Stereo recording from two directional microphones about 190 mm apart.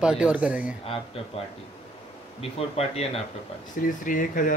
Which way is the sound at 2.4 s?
30° left (ahead or behind).